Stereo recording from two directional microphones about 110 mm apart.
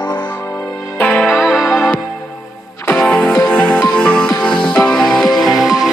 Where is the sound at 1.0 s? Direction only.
10° left (ahead or behind).